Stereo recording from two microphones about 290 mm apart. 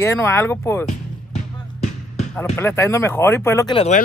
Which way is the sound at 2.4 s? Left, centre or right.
Centre.